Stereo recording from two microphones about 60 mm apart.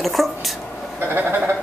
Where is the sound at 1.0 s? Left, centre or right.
Right.